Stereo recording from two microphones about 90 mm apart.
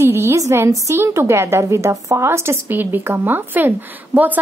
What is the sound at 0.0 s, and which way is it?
A woman's voice, 30° right (ahead or behind).